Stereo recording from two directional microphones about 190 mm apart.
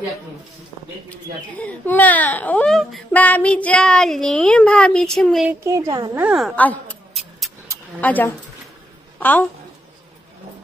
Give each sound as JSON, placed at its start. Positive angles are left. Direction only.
{"t": 1.1, "sound": "speech", "side_deg": 10}
{"t": 5.5, "sound": "speech", "side_deg": -15}
{"t": 6.2, "sound": "a sound", "side_deg": 0}
{"t": 9.2, "sound": "a woman's voice", "side_deg": 10}